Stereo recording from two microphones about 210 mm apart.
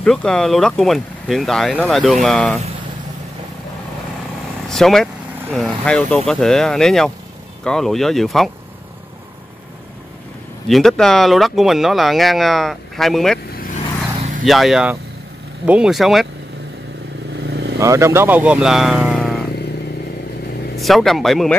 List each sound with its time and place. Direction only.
0.0 s speech: 5° left (ahead or behind)
4.6 s speech: centre (ahead or behind)
10.7 s speech: centre (ahead or behind)
14.1 s vehicle: 35° right (ahead or behind)
14.4 s speech: centre (ahead or behind)
17.5 s vehicle: 50° right (ahead or behind)
17.7 s speech: 15° right (ahead or behind)
20.7 s speech: centre (ahead or behind)